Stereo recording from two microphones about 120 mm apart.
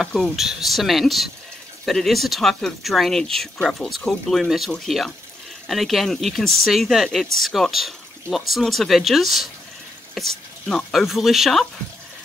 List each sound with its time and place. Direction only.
0.0 s speech: centre (ahead or behind)